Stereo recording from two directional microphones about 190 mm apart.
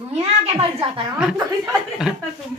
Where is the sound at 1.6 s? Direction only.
5° right (ahead or behind).